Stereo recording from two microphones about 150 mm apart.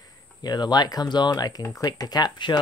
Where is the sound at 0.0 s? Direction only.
25° left (ahead or behind).